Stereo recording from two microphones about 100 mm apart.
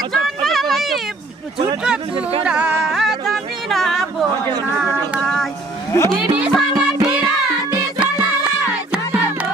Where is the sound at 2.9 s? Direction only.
Centre (ahead or behind).